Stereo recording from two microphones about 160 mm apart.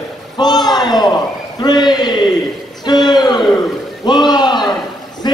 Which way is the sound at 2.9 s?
25° left (ahead or behind).